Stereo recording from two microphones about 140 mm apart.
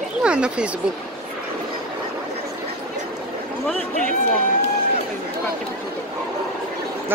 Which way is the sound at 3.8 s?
55° right (ahead or behind).